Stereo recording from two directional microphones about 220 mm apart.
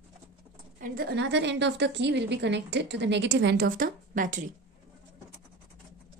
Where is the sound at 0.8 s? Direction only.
45° right (ahead or behind).